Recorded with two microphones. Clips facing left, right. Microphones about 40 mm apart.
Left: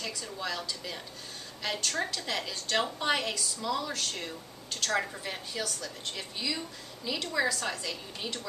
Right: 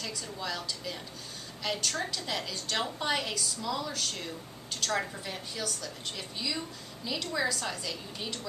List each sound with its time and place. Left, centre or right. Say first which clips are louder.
0.0 s a woman's voice: left 1 dB; centre
4.9 s a woman's voice: left 2 dB; centre
5.5 s a woman's voice: left 1 dB; centre